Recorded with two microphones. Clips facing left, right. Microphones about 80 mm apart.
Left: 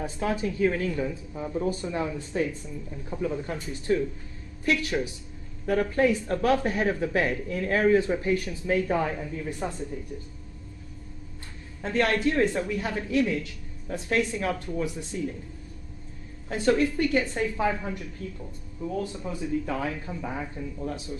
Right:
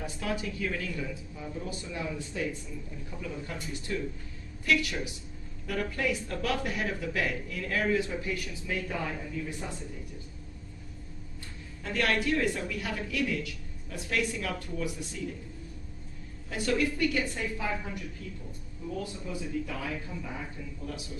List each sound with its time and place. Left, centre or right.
0.0 s a woman's voice: left
11.8 s speech: left
16.5 s speech: left